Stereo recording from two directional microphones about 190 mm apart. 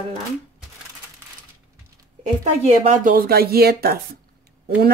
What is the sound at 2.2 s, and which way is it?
A woman's voice, 40° right (ahead or behind).